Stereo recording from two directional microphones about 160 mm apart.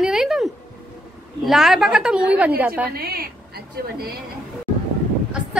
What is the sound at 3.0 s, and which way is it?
Speech, 75° right (ahead or behind).